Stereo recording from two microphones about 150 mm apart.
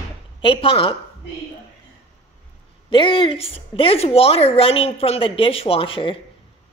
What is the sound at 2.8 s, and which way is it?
A woman's voice, 35° left (ahead or behind).